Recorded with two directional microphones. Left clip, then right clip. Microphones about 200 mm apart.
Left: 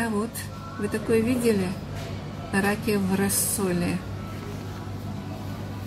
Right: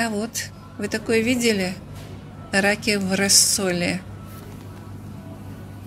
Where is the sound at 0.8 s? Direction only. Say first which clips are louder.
Right 3 dB; centre (ahead or behind).